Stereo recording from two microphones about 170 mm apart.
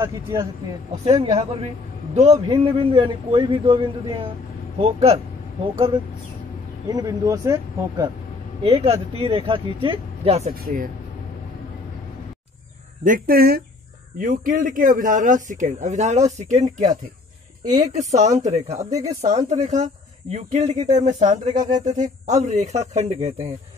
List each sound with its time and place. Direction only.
0.0 s speech: 25° right (ahead or behind)
1.4 s a man's voice: 35° right (ahead or behind)
6.9 s speech: 20° right (ahead or behind)
8.6 s a man's voice: 35° right (ahead or behind)
10.5 s speech: 60° right (ahead or behind)
13.0 s a man's voice: 55° right (ahead or behind)
18.9 s speech: 20° right (ahead or behind)
19.2 s a man's voice: 45° right (ahead or behind)